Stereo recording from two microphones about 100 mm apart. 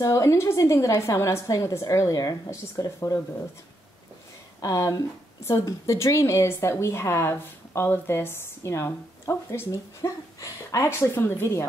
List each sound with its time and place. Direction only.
0.0 s a woman's voice: 30° left (ahead or behind)
4.6 s a woman's voice: 40° left (ahead or behind)